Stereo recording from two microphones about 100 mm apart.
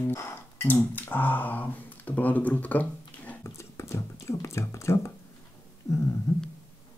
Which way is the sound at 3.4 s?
30° left (ahead or behind).